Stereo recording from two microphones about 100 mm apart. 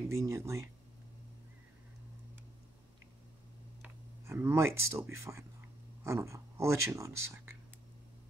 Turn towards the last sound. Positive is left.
turn(degrees=-30)  # may be behind; listen again after turning